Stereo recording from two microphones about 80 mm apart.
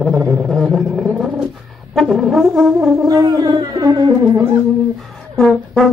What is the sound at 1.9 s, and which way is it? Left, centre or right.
Brass instrument, centre.